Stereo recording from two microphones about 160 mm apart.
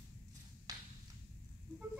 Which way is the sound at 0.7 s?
25° right (ahead or behind).